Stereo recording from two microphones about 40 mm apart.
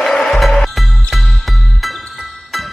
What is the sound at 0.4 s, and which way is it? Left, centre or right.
Music, centre.